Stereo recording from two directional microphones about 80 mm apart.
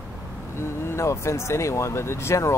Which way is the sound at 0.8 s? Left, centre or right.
Left.